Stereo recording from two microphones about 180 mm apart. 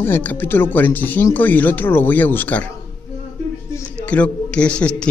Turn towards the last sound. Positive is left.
turn(degrees=5)  # may be behind; listen again after turning